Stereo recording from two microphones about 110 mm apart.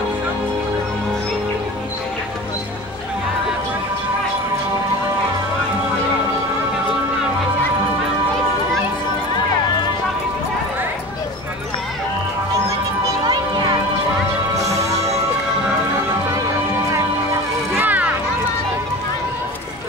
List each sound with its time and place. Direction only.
13.3 s music: 45° right (ahead or behind)
17.7 s music: 15° right (ahead or behind)